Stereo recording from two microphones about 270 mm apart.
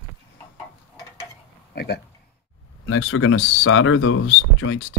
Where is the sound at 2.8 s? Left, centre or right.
Left.